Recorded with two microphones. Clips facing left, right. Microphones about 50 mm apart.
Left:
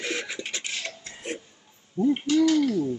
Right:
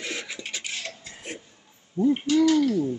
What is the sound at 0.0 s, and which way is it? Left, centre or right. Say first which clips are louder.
Beatboxing: left 3 dB; left.